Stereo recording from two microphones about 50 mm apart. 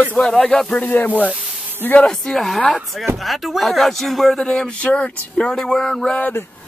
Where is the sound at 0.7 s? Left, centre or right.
Left.